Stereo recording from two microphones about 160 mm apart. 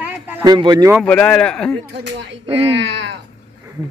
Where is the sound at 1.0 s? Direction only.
10° left (ahead or behind).